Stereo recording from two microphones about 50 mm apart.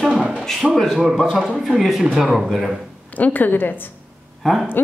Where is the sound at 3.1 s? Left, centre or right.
Left.